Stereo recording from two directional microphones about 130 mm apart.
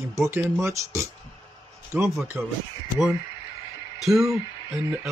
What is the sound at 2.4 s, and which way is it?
Speech, 20° right (ahead or behind).